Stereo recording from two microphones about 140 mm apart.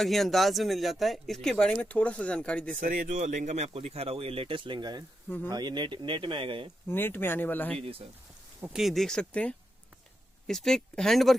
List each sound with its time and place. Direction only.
0.0 s speech: centre (ahead or behind)
2.8 s speech: 70° right (ahead or behind); by 6.7 s 35° right (ahead or behind)
6.9 s speech: 15° left (ahead or behind)
8.7 s speech: centre (ahead or behind)